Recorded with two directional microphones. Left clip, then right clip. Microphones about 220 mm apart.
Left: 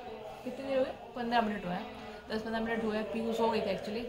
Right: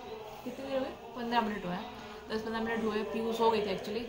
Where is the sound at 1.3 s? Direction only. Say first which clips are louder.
Left 1 dB; 5° left (ahead or behind).